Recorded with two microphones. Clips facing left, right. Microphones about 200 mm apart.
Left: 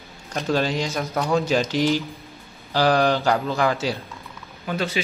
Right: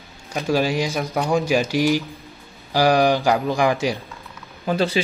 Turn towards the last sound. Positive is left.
turn(degrees=-35)  # may be behind; listen again after turning